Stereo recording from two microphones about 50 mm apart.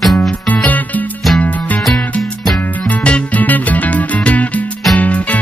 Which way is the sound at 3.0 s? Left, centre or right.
Left.